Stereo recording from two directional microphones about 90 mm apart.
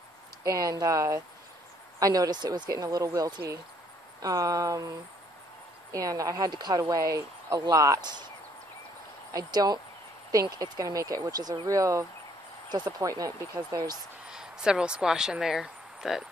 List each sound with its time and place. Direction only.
0.4 s speech: 40° right (ahead or behind)
9.3 s speech: 45° right (ahead or behind)
12.6 s speech: 55° right (ahead or behind)
13.0 s speech: 40° right (ahead or behind)
14.3 s speech: 10° right (ahead or behind)